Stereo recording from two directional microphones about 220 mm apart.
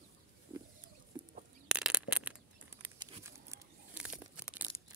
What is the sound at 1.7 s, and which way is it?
Bird flight, 5° right (ahead or behind).